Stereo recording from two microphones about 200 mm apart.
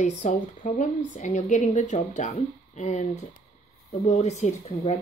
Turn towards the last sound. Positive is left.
turn(degrees=35)  # may be behind; listen again after turning